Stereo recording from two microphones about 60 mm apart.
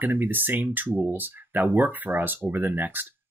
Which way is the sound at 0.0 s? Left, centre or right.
Right.